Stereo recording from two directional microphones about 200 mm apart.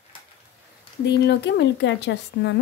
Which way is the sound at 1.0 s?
55° left (ahead or behind).